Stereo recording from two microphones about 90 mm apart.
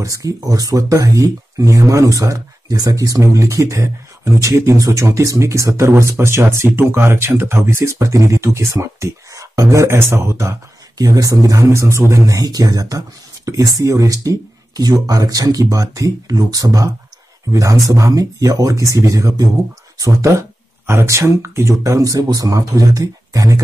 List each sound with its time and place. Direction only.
0.0 s speech: 35° right (ahead or behind)